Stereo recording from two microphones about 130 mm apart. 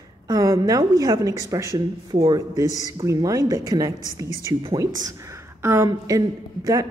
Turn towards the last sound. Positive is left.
turn(degrees=-25)  # may be behind; listen again after turning